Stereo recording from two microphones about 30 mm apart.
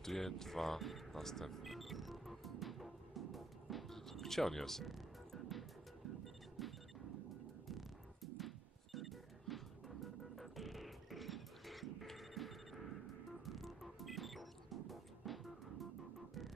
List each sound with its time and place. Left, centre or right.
0.0 s speech: centre
1.1 s music: centre
3.9 s music: centre
6.2 s music: centre
12.2 s a sound: centre
13.5 s music: centre